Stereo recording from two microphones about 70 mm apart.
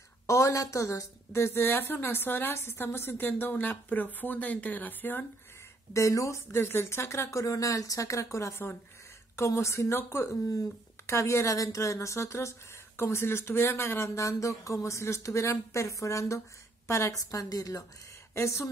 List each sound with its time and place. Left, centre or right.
0.3 s a woman's voice: left
5.9 s a woman's voice: left
6.6 s a woman's voice: left
18.3 s speech: left